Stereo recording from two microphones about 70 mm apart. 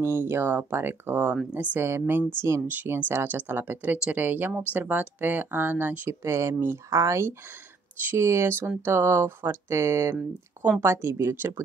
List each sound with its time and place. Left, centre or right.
0.0 s speech: right
1.5 s speech: right
1.8 s speech: right